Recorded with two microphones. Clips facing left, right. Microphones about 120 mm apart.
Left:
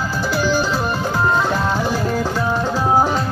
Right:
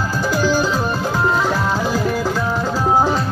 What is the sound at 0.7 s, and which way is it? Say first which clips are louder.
Music: right 1 dB; 10° left (ahead or behind).